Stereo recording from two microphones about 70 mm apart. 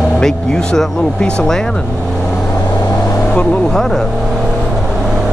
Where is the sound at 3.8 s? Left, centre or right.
Centre.